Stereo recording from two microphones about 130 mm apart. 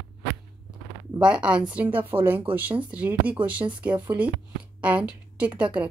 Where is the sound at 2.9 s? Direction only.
10° right (ahead or behind).